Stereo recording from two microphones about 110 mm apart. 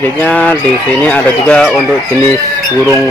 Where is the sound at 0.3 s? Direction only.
10° left (ahead or behind).